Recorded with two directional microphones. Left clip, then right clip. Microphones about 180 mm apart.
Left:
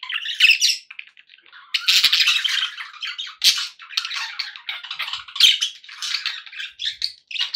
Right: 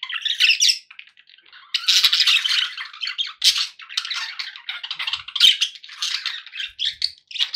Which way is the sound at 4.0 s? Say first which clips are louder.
Left 1 dB; 45° left (ahead or behind).